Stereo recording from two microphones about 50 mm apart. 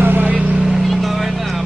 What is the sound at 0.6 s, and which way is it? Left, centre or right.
Vehicle, centre.